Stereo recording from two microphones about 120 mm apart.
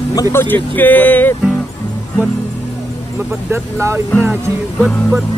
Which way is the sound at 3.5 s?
20° right (ahead or behind).